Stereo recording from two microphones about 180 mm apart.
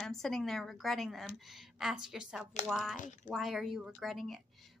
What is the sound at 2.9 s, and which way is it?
Speech, 45° left (ahead or behind).